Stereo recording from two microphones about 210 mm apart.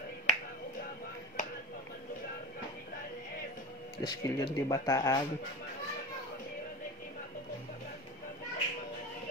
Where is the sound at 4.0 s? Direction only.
20° left (ahead or behind).